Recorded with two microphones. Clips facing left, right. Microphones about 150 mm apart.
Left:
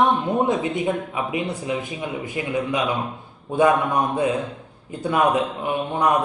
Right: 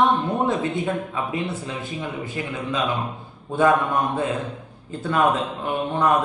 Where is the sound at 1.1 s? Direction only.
15° left (ahead or behind).